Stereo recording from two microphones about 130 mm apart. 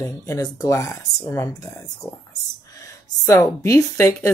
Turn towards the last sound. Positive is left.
turn(degrees=25)  # may be behind; listen again after turning